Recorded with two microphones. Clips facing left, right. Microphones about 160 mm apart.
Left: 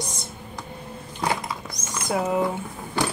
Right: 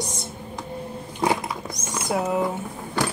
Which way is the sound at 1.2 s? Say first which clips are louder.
Right 3 dB; 20° right (ahead or behind).